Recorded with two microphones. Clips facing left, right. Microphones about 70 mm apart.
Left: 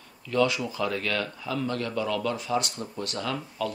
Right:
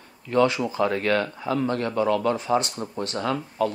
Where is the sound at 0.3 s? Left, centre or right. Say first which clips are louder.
Right 4 dB; right.